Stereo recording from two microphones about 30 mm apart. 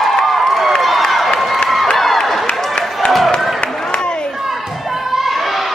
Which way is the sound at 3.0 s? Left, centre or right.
Left.